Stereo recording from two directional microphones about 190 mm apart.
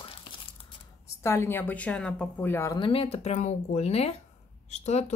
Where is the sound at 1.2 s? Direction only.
15° left (ahead or behind).